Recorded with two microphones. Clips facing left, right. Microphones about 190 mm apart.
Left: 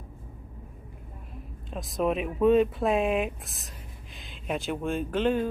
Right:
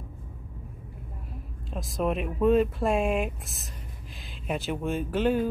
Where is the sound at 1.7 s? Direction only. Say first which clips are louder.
Left 1 dB; centre (ahead or behind).